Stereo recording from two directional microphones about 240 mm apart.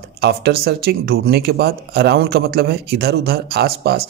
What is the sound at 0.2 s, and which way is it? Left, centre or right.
Speech, right.